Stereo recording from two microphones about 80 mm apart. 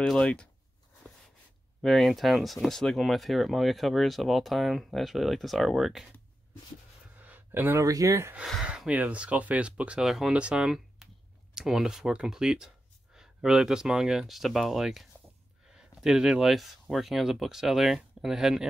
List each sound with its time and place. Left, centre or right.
0.2 s speech: centre
1.8 s speech: centre
7.2 s a sound: right
7.8 s speech: right
8.6 s speech: centre
11.0 s a sound: centre
11.5 s speech: centre